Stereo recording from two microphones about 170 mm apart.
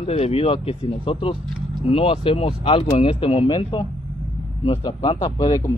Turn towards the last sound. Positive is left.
turn(degrees=25)  # may be behind; listen again after turning